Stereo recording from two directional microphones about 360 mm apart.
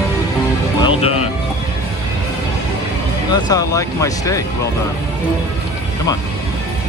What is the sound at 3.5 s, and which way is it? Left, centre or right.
Speech, centre.